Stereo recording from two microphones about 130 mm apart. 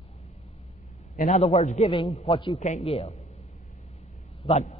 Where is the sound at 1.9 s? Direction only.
40° left (ahead or behind).